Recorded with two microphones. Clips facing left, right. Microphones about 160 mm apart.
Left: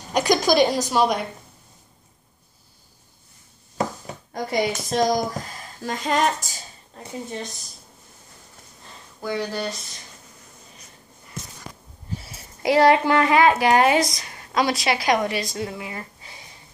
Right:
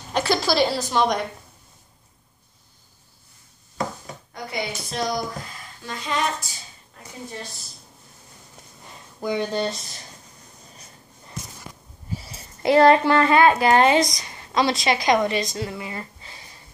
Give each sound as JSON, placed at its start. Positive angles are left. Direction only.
{"t": 0.1, "sound": "speech", "side_deg": 15}
{"t": 4.3, "sound": "a woman's voice", "side_deg": 40}
{"t": 7.0, "sound": "a woman's voice", "side_deg": 25}
{"t": 9.2, "sound": "speech", "side_deg": -20}
{"t": 12.6, "sound": "speech", "side_deg": 10}
{"t": 15.8, "sound": "a sound", "side_deg": 10}